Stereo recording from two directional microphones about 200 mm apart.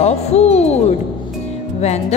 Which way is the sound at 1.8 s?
35° left (ahead or behind).